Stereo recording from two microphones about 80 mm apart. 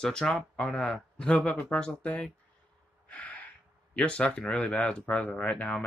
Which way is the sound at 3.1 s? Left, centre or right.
Centre.